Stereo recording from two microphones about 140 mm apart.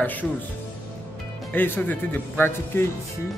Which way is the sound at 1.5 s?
15° left (ahead or behind).